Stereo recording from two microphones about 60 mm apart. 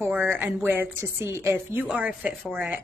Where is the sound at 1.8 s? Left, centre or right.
Right.